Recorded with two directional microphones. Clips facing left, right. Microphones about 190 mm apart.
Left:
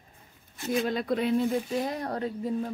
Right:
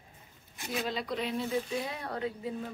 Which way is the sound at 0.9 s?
50° left (ahead or behind).